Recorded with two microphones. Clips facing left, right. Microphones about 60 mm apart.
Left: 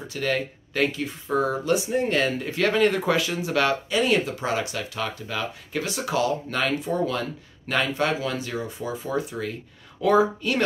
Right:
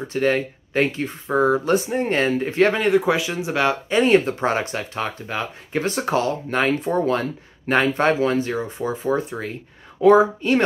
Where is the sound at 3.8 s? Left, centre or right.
Right.